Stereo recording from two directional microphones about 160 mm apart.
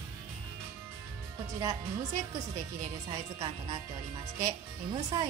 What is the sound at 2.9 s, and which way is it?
Speech, 25° right (ahead or behind).